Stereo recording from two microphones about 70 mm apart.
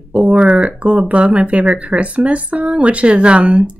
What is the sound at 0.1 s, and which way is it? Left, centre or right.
Speech, centre.